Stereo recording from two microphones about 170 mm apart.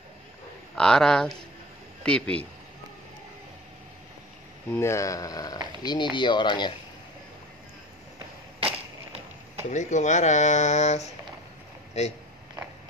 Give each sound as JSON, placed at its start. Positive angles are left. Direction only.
{"t": 0.7, "sound": "speech", "side_deg": 5}
{"t": 4.7, "sound": "speech", "side_deg": 15}
{"t": 8.5, "sound": "a sound", "side_deg": -35}
{"t": 9.7, "sound": "speech", "side_deg": 45}